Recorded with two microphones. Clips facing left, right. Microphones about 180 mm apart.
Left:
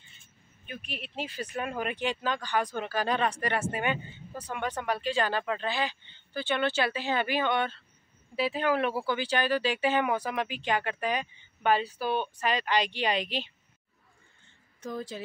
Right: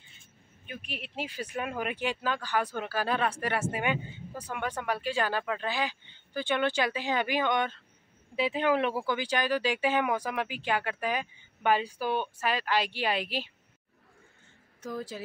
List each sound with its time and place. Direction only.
0.7 s speech: 10° right (ahead or behind)
14.8 s speech: 5° right (ahead or behind)